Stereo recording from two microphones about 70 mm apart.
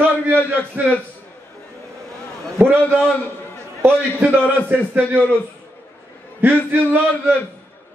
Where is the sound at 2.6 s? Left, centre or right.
Right.